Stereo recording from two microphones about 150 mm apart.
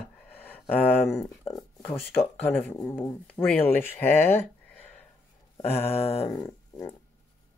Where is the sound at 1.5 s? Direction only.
40° left (ahead or behind).